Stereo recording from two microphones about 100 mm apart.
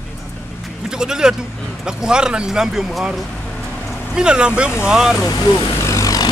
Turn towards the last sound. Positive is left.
turn(degrees=35)  # may be behind; listen again after turning